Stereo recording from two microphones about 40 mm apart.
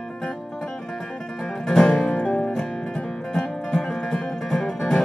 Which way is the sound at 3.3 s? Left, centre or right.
Centre.